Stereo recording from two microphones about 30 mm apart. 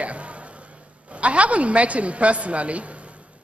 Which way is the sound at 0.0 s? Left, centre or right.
Right.